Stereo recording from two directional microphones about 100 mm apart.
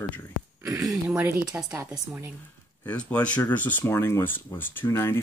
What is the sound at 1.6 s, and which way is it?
Speech, 35° right (ahead or behind).